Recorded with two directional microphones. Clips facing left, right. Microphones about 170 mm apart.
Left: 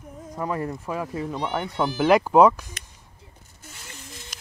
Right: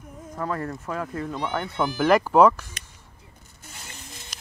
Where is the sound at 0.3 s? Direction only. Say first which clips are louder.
Left 1 dB; 15° left (ahead or behind).